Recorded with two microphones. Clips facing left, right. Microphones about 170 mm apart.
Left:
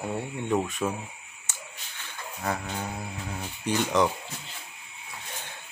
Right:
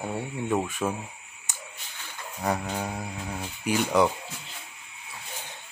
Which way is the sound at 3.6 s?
10° right (ahead or behind).